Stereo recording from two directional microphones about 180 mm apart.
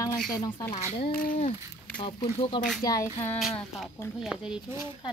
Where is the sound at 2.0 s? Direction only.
30° left (ahead or behind).